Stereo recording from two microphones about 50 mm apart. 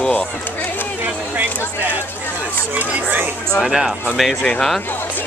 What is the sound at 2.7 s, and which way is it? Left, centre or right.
Speech, right.